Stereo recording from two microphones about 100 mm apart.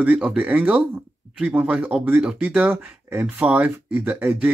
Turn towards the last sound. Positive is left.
turn(degrees=-10)  # may be behind; listen again after turning